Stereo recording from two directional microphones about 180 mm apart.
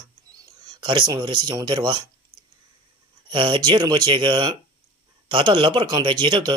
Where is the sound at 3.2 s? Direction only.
25° right (ahead or behind).